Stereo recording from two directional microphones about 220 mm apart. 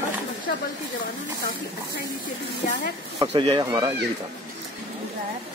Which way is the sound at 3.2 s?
25° right (ahead or behind).